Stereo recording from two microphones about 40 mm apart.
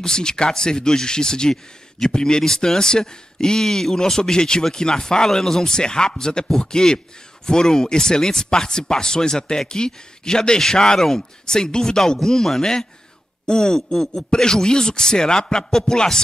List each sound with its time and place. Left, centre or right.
0.0 s speech: centre